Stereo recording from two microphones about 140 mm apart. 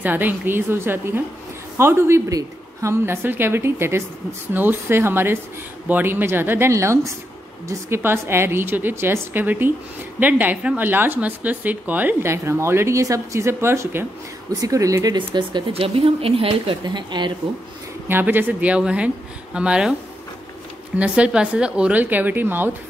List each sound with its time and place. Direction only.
0.0 s speech: 15° right (ahead or behind); by 17.3 s 35° right (ahead or behind)
18.0 s speech: 15° right (ahead or behind)
21.0 s speech: 5° right (ahead or behind)